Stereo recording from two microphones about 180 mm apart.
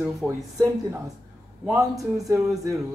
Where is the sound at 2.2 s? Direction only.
20° right (ahead or behind).